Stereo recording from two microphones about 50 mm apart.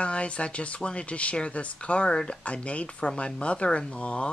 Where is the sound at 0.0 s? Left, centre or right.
Left.